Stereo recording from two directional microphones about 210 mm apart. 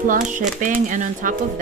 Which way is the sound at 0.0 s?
40° right (ahead or behind).